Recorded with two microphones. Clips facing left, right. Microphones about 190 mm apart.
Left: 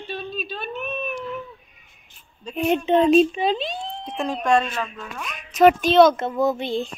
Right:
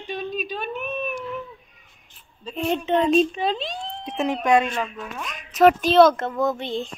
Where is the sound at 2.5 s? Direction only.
15° left (ahead or behind).